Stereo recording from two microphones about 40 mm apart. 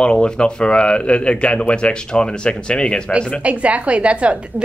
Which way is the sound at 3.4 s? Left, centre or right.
Right.